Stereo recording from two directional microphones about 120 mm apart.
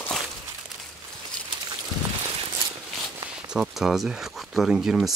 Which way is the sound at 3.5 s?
5° right (ahead or behind).